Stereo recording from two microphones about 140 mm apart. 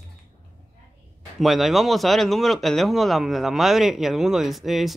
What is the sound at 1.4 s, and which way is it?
Speech, centre (ahead or behind).